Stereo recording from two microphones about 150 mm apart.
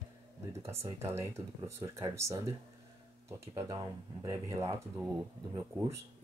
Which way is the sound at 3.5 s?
25° right (ahead or behind).